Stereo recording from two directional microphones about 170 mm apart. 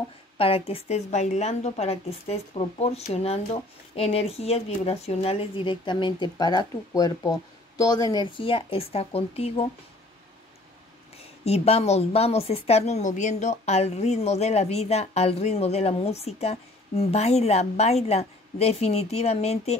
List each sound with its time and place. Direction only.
0.4 s a woman's voice: 35° left (ahead or behind)
11.1 s a woman's voice: 35° left (ahead or behind)